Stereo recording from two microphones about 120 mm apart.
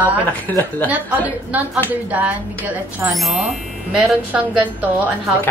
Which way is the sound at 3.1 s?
Centre (ahead or behind).